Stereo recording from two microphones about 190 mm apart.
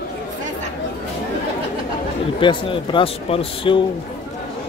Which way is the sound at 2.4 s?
25° left (ahead or behind).